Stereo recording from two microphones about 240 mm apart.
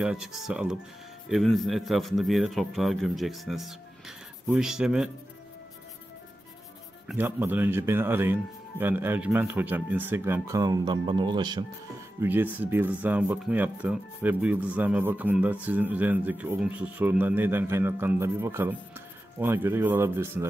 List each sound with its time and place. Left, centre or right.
0.0 s a man's voice: centre
7.1 s speech: centre
12.2 s speech: centre